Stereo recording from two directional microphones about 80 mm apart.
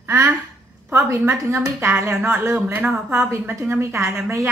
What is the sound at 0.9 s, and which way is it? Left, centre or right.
Speech, right.